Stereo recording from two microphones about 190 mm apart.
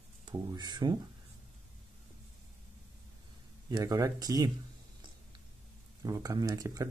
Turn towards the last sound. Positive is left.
turn(degrees=-20)  # may be behind; listen again after turning